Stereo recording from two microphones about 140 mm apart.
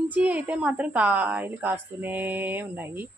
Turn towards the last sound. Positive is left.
turn(degrees=-15)  # may be behind; listen again after turning